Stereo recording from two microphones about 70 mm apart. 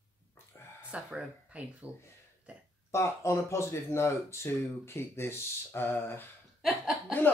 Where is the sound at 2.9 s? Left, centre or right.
Left.